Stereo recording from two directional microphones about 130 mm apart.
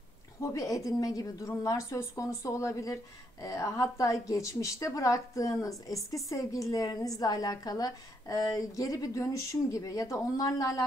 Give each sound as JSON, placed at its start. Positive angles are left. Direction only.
{"t": 0.4, "sound": "a woman's voice", "side_deg": 25}